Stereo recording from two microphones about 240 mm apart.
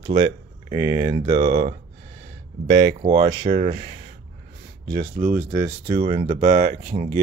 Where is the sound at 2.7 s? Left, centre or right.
Right.